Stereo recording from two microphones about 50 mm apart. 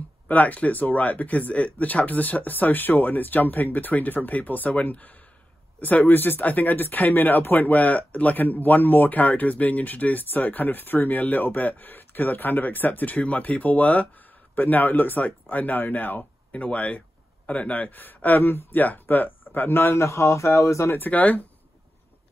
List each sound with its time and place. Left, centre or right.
0.3 s speech: left
19.7 s a man's voice: left
21.1 s speech: left